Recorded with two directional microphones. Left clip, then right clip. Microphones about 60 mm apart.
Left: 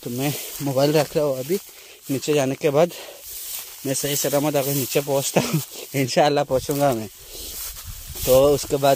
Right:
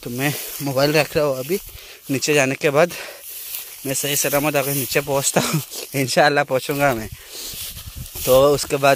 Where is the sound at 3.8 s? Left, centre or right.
Left.